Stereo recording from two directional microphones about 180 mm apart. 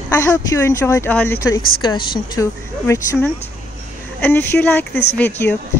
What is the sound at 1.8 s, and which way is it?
Speech, 25° left (ahead or behind).